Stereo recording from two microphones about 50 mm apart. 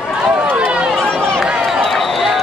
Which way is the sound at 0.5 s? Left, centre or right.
Right.